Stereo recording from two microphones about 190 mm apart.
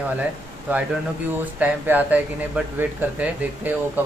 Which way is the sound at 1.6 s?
10° right (ahead or behind).